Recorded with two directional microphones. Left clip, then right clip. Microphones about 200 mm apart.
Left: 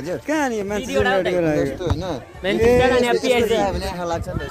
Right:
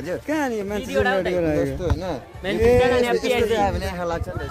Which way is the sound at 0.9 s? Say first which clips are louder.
Left 2 dB; 50° left (ahead or behind).